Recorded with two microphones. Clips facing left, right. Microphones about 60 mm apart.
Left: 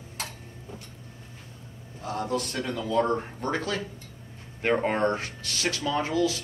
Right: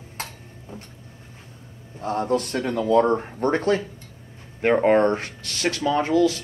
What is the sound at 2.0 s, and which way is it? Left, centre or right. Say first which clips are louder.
Speech: right 6 dB; right.